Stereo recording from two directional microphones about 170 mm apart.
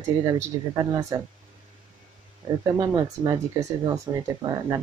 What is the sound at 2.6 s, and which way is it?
Speech, 20° right (ahead or behind).